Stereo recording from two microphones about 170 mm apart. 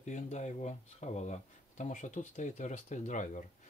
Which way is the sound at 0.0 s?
45° left (ahead or behind).